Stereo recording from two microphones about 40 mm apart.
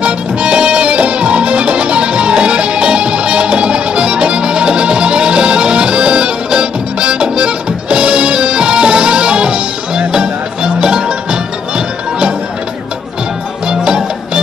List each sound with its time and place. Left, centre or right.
0.0 s music: right
13.7 s music: right